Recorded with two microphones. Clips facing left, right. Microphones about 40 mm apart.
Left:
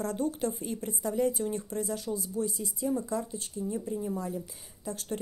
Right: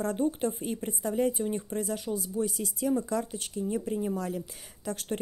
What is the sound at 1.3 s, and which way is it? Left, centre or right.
Speech, right.